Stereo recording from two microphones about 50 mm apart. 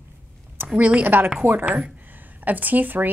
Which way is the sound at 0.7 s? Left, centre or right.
Right.